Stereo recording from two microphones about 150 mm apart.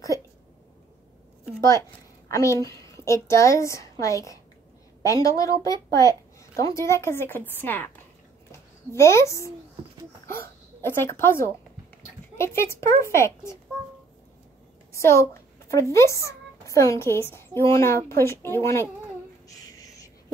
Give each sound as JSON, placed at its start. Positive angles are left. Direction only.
{"t": 1.7, "sound": "a woman's voice", "side_deg": 20}
{"t": 10.8, "sound": "a woman's voice", "side_deg": 15}
{"t": 14.9, "sound": "speech", "side_deg": 20}